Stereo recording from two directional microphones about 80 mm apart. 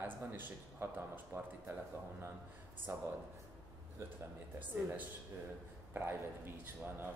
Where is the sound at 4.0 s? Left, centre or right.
Right.